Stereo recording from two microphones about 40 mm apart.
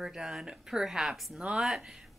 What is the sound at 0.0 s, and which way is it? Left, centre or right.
A woman's voice, centre.